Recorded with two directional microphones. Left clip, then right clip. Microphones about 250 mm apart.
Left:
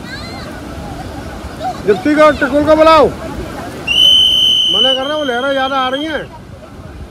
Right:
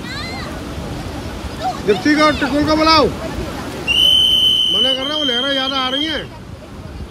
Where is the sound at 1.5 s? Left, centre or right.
Centre.